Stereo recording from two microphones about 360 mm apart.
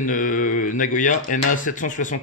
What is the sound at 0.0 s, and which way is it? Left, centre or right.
Speech, left.